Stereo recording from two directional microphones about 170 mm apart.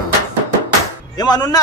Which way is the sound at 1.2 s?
25° left (ahead or behind).